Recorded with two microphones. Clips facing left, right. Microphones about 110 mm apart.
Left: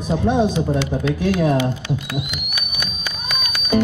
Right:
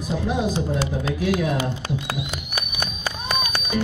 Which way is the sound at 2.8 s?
35° right (ahead or behind).